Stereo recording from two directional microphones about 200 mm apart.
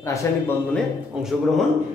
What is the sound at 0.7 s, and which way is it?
Speech, centre (ahead or behind).